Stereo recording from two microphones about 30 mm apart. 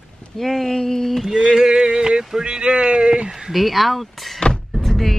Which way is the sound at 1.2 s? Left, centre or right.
Centre.